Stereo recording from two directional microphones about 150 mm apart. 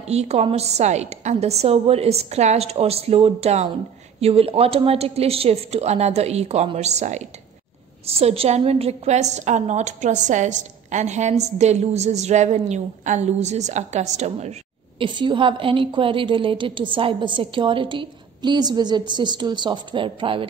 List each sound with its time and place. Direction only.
0.1 s a woman's voice: 45° right (ahead or behind)
15.0 s a woman's voice: 30° right (ahead or behind)